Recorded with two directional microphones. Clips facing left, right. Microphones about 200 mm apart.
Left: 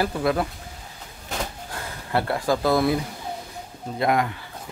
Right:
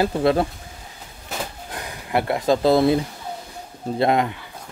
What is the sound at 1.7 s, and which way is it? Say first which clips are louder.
Speech: right 4 dB; 15° right (ahead or behind).